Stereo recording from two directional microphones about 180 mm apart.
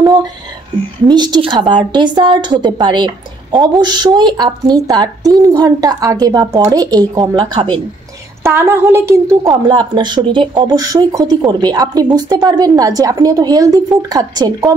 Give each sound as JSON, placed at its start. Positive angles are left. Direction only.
{"t": 1.0, "sound": "a woman's voice", "side_deg": -25}